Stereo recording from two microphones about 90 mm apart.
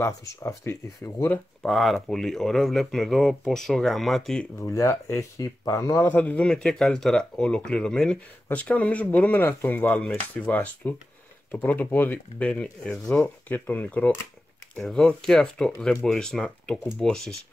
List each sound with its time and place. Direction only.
0.0 s speech: 35° left (ahead or behind)
1.6 s speech: centre (ahead or behind)
4.6 s speech: 30° left (ahead or behind)
6.0 s speech: 20° left (ahead or behind)
6.4 s speech: 5° left (ahead or behind)
13.2 s speech: 20° left (ahead or behind)
14.8 s speech: centre (ahead or behind)